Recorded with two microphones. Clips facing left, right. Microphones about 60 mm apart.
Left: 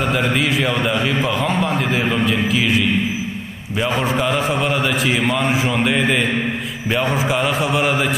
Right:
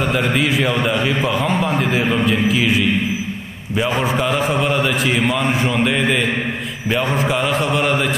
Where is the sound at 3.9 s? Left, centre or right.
Centre.